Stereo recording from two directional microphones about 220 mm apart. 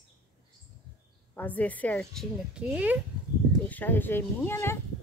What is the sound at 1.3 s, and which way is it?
Speech, 5° left (ahead or behind).